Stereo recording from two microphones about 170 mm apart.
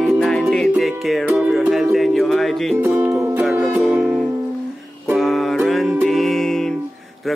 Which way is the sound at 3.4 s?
5° right (ahead or behind).